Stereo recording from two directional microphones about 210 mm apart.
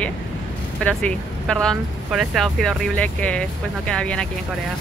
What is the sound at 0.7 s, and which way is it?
Speech, 5° left (ahead or behind).